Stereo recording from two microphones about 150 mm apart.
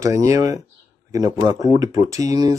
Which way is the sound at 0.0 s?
20° right (ahead or behind).